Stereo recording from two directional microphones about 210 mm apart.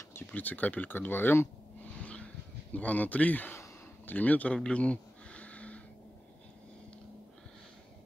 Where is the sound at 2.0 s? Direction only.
5° left (ahead or behind).